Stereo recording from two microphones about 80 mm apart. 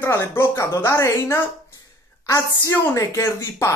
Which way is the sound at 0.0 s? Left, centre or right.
Left.